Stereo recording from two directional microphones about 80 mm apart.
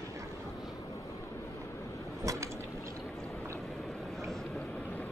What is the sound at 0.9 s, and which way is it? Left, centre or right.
Vehicle, left.